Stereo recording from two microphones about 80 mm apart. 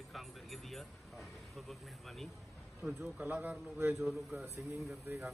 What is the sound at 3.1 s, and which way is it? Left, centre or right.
A man's voice, centre.